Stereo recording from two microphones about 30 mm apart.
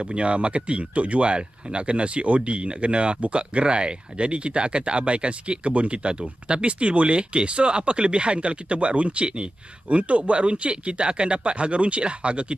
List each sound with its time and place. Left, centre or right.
0.0 s speech: right